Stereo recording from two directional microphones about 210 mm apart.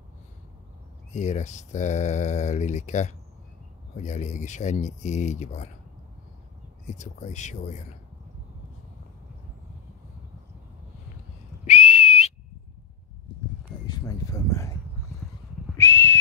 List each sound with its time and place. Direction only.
1.1 s speech: 35° left (ahead or behind)
6.9 s speech: 35° left (ahead or behind)
11.6 s whistle: 35° left (ahead or behind)
13.8 s a sound: 20° left (ahead or behind)
15.8 s whistle: 10° left (ahead or behind)